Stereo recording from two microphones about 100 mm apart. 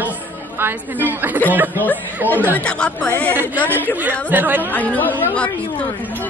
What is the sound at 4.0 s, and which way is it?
Speech, 15° right (ahead or behind).